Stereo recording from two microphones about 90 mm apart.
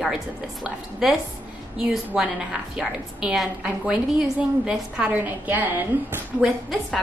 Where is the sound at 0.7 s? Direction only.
5° right (ahead or behind); by 6.2 s 20° right (ahead or behind).